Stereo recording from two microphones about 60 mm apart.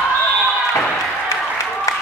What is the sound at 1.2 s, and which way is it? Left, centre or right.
Applause, left.